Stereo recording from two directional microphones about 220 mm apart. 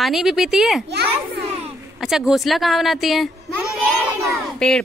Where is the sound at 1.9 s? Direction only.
Centre (ahead or behind).